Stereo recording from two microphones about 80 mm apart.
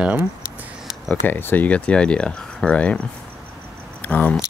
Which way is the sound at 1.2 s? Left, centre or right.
Left.